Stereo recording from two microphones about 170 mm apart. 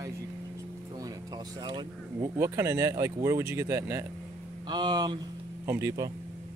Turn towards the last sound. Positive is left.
turn(degrees=-20)  # may be behind; listen again after turning